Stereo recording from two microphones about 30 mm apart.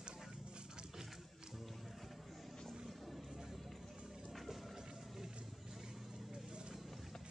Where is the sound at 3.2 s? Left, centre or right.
Centre.